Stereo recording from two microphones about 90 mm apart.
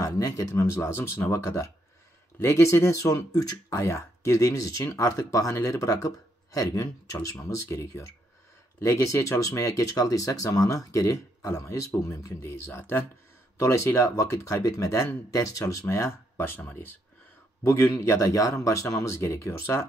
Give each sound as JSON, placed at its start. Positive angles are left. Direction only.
{"t": 0.0, "sound": "speech", "side_deg": 35}
{"t": 17.6, "sound": "speech", "side_deg": 30}